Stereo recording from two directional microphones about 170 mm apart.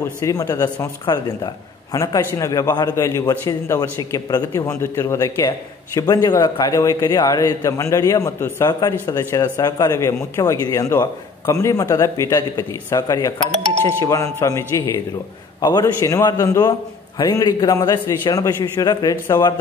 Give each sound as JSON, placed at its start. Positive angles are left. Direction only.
{"t": 0.0, "sound": "a man's voice", "side_deg": 15}
{"t": 15.6, "sound": "a man's voice", "side_deg": 20}